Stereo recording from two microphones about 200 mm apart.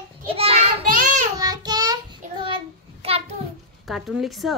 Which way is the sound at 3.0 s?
30° right (ahead or behind).